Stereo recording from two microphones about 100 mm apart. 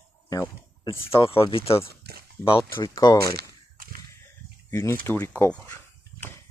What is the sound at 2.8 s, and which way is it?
Speech, 40° left (ahead or behind).